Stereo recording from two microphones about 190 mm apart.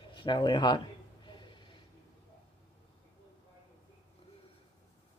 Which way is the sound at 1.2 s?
25° left (ahead or behind).